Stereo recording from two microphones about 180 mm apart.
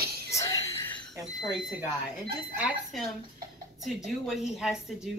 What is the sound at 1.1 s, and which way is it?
A woman's voice, centre (ahead or behind).